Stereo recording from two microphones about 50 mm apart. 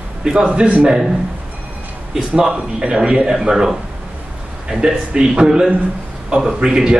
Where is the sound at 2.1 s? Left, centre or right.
Centre.